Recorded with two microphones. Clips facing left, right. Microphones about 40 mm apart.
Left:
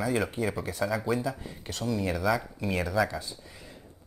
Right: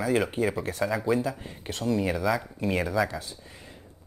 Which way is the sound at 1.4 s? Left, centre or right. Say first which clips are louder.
Right 2 dB; right.